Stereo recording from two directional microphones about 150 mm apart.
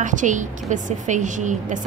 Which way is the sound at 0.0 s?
55° right (ahead or behind).